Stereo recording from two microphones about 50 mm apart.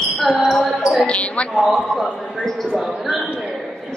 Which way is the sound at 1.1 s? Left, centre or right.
Left.